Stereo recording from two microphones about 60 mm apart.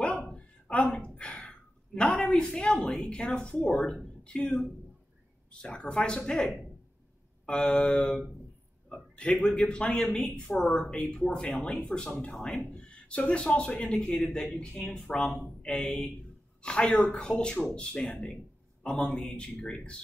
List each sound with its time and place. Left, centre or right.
0.0 s a sound: left
2.0 s a man's voice: centre
5.5 s a man's voice: centre